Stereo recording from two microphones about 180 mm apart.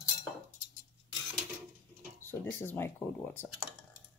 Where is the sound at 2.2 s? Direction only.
15° left (ahead or behind).